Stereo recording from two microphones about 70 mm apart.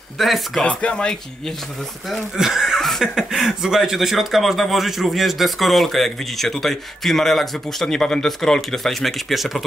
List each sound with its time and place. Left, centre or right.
0.2 s speech: centre
0.7 s speech: centre
2.3 s speech: centre